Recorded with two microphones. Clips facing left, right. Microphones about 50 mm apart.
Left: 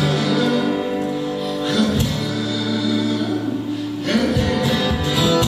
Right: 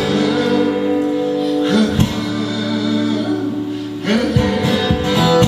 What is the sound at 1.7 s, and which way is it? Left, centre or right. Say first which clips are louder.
Music: right 1 dB; right.